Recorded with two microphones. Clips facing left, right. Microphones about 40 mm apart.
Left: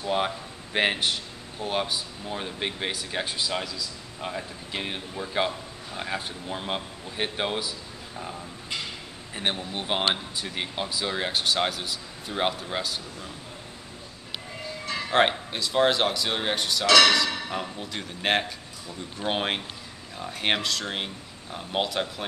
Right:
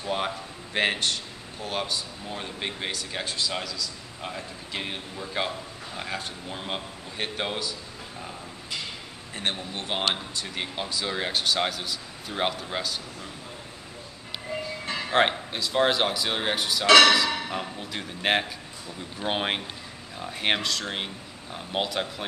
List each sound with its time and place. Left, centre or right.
0.0 s speech: centre
4.3 s speech: centre
9.3 s speech: centre
15.0 s speech: centre
16.8 s speech: right
17.5 s speech: centre